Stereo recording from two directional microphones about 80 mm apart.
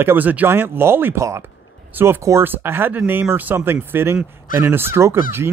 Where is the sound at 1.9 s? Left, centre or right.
Right.